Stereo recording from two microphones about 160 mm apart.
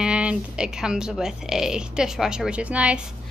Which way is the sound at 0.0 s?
5° right (ahead or behind).